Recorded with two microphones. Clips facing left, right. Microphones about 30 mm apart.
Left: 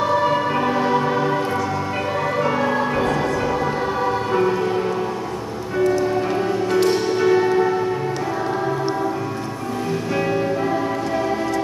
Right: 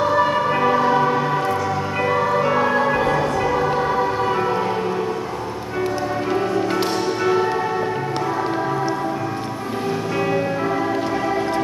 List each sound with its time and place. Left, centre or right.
0.0 s music: centre
5.8 s music: centre
10.1 s music: centre